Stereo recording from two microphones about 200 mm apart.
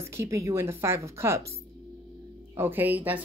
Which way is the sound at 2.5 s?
10° right (ahead or behind).